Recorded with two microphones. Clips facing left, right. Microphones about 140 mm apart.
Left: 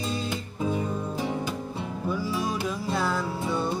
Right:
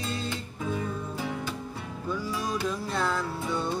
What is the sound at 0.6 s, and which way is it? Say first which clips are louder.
Music: left 4 dB; 20° left (ahead or behind).